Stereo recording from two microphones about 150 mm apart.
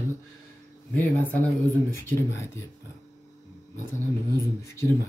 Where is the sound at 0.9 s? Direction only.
10° left (ahead or behind).